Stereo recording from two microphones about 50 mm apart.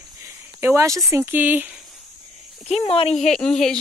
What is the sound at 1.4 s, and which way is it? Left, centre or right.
Speech, right.